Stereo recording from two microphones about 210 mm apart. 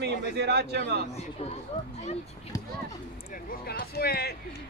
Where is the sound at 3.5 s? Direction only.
45° left (ahead or behind).